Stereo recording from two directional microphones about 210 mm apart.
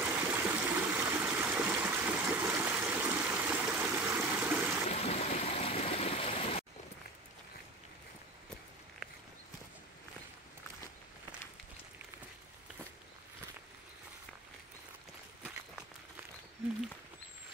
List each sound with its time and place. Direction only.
0.0 s stream: 10° right (ahead or behind)
4.9 s stream: 30° left (ahead or behind)